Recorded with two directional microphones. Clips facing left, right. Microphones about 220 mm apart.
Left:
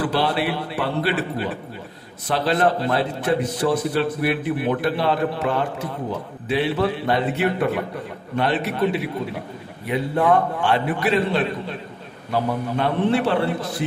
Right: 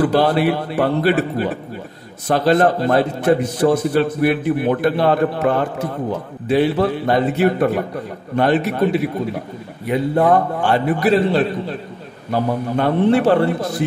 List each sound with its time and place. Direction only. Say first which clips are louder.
0.0 s a man's voice: right 7 dB; 45° right (ahead or behind)
12.7 s a man's voice: right 6 dB; 45° right (ahead or behind)